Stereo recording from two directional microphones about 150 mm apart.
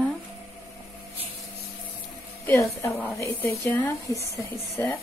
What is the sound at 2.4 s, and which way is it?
A woman's voice, 20° left (ahead or behind).